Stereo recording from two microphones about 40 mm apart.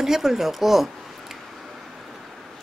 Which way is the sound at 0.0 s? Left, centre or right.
Centre.